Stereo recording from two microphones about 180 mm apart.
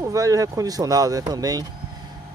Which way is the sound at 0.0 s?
20° right (ahead or behind).